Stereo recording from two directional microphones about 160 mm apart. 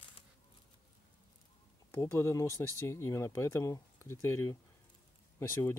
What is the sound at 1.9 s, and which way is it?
Speech, 15° left (ahead or behind).